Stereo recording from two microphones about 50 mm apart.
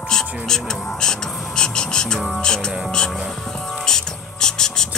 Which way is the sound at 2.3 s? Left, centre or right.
Centre.